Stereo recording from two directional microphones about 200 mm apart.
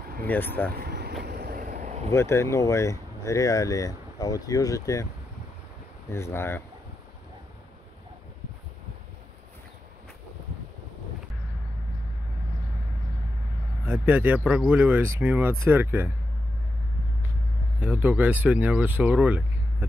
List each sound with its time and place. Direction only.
0.3 s speech: 10° left (ahead or behind)
0.7 s a sound: 50° right (ahead or behind)
2.0 s speech: 15° left (ahead or behind)
6.0 s speech: 15° left (ahead or behind)
13.8 s speech: 10° right (ahead or behind)
17.7 s speech: 5° right (ahead or behind)